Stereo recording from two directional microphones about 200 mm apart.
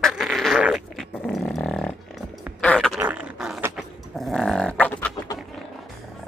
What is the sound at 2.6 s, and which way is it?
Fart, 5° left (ahead or behind).